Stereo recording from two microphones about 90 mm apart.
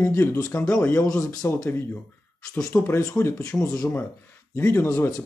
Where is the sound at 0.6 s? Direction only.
15° left (ahead or behind).